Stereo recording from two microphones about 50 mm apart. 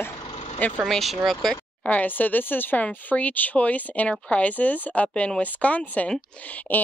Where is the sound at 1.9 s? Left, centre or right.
Left.